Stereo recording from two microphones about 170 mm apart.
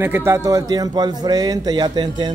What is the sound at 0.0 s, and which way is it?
A man's voice, 15° right (ahead or behind).